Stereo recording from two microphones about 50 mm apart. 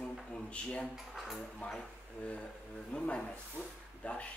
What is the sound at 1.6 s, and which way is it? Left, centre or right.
Speech, left.